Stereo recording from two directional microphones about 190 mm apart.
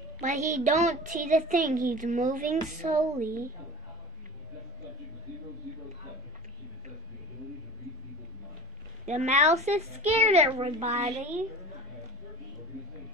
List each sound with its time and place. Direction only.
0.2 s a woman's voice: 40° right (ahead or behind)
9.0 s speech: 35° right (ahead or behind)